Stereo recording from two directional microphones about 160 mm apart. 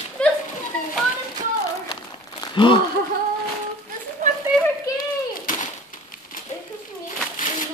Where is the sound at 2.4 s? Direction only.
30° left (ahead or behind).